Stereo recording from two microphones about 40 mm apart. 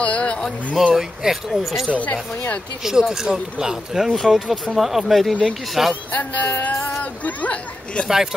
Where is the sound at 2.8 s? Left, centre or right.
Centre.